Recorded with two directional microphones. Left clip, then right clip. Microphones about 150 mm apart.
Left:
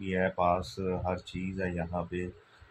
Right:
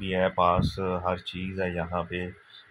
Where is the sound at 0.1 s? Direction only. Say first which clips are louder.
Right 4 dB; 10° right (ahead or behind).